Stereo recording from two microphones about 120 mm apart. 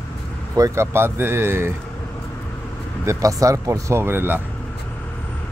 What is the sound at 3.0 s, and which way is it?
Speech, 25° right (ahead or behind).